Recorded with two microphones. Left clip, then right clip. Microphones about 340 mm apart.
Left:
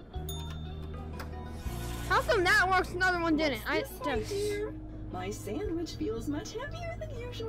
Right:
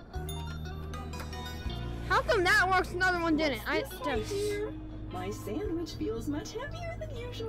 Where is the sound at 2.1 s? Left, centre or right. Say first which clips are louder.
Even; centre.